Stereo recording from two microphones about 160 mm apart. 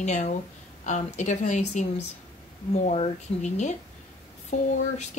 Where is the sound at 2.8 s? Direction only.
45° left (ahead or behind).